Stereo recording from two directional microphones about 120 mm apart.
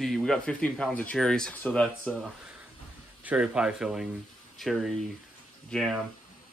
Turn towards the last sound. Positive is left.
turn(degrees=0)  # may be behind; listen again after turning